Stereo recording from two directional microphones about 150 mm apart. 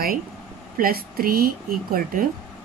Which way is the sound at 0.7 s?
75° right (ahead or behind).